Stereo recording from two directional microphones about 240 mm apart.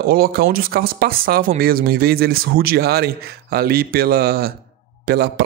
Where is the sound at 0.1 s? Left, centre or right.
Right.